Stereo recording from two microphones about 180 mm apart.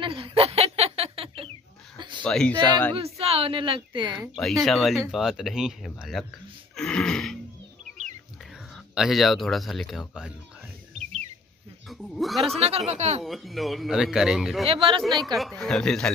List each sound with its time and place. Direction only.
0.0 s a sound: 30° right (ahead or behind)
2.2 s a man's voice: 5° left (ahead or behind)
2.9 s speech: 35° right (ahead or behind)
4.4 s a man's voice: centre (ahead or behind)
6.7 s a sound: 5° left (ahead or behind)
8.9 s a man's voice: centre (ahead or behind)
11.9 s speech: centre (ahead or behind)
12.5 s speech: 35° right (ahead or behind)
13.2 s a man's voice: centre (ahead or behind)
14.7 s speech: 30° right (ahead or behind)
15.3 s a man's voice: centre (ahead or behind)